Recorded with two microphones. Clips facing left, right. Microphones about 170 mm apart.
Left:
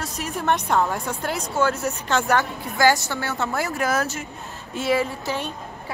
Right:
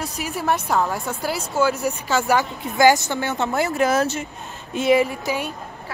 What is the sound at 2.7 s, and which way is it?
Speech, 20° right (ahead or behind).